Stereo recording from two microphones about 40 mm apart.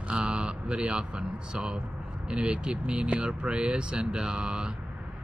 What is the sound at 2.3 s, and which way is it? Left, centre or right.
Speech, right.